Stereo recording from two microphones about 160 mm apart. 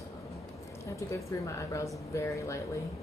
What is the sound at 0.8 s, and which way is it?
Speech, 20° left (ahead or behind).